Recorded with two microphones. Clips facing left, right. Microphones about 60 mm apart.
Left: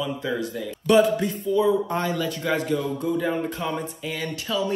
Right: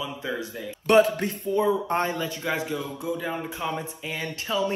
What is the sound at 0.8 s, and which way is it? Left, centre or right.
Speech, right.